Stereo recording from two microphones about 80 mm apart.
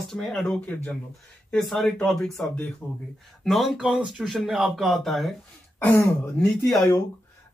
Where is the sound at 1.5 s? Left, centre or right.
Centre.